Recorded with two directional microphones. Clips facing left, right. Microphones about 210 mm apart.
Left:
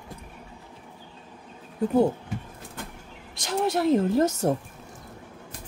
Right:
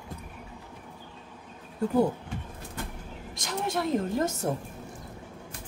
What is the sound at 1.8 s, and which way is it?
Speech, 25° left (ahead or behind).